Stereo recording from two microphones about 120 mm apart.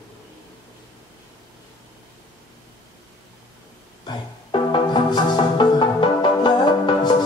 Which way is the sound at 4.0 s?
40° left (ahead or behind).